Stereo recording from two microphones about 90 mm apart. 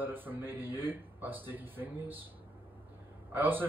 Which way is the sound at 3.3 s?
20° right (ahead or behind).